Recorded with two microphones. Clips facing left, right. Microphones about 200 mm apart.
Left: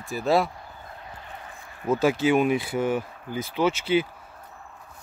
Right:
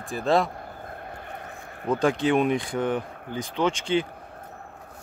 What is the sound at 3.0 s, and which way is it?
Speech, 55° right (ahead or behind).